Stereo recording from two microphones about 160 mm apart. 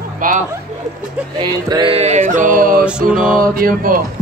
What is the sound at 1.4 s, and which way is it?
Mantra, 30° right (ahead or behind).